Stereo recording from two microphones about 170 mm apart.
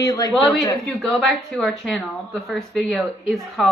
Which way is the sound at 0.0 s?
20° left (ahead or behind).